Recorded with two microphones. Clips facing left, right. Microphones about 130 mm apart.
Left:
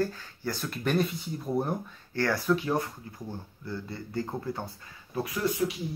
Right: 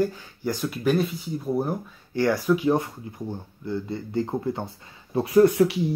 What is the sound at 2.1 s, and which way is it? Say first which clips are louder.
Speech: right 5 dB; 15° right (ahead or behind).